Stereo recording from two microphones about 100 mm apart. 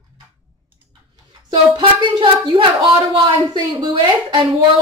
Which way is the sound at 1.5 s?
55° right (ahead or behind).